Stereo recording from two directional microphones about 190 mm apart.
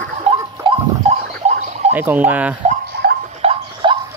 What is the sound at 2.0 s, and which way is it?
Speech, 10° right (ahead or behind).